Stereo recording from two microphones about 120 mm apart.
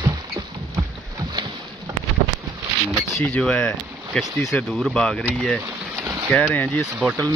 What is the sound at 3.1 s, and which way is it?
Speech, 5° left (ahead or behind).